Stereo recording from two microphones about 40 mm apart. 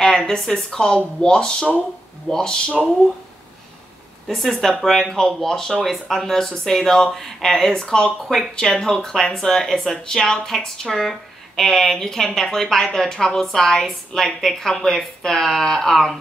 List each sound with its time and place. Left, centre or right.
0.0 s a sound: centre
0.5 s speech: centre
4.3 s speech: centre
6.4 s speech: centre
7.7 s speech: centre
8.3 s speech: centre